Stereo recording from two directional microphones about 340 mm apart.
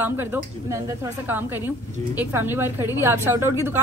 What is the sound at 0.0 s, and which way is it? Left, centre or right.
A woman's voice, centre.